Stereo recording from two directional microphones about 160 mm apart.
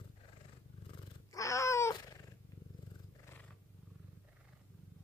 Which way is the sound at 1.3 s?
20° left (ahead or behind).